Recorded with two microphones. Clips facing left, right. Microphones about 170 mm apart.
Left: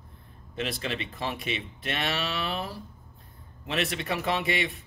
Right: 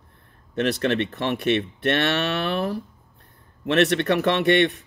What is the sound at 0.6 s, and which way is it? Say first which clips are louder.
Cattle: right 10 dB; 70° right (ahead or behind).